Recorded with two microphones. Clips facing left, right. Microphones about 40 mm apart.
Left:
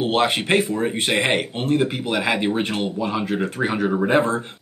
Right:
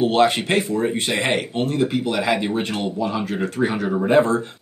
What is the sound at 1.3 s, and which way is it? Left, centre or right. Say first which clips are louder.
Speech: left 1 dB; left.